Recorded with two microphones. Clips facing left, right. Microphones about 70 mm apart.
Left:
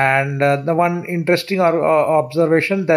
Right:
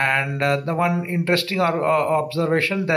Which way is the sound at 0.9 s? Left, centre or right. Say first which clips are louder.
Left 4 dB; centre.